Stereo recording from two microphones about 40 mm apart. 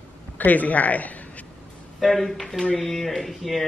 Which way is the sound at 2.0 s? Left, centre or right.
Centre.